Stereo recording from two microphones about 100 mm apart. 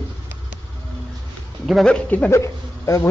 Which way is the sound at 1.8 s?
10° left (ahead or behind).